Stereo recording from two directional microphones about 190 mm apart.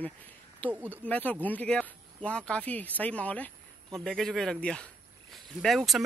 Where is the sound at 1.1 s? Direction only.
10° left (ahead or behind).